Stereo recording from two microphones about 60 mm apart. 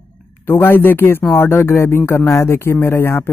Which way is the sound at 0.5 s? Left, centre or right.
Left.